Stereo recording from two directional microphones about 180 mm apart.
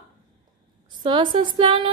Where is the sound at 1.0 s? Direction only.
30° right (ahead or behind).